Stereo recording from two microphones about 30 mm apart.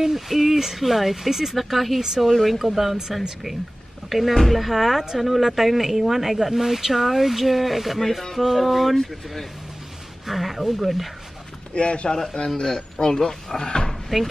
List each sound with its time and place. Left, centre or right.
0.1 s speech: centre
2.0 s speech: centre
2.2 s speech: centre
2.6 s speech: centre
4.1 s speech: centre
10.2 s speech: centre
11.7 s speech: left
12.5 s a man's voice: left
14.1 s speech: centre